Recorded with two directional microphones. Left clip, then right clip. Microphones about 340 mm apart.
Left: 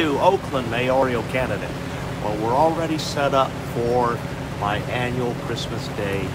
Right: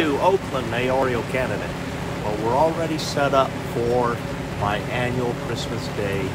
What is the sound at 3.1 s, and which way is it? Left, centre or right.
Speech, centre.